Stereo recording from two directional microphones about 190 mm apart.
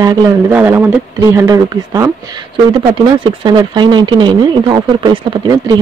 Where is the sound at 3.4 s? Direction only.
25° right (ahead or behind).